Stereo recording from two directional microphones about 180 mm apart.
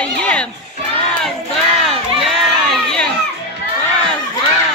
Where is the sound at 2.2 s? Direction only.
Centre (ahead or behind).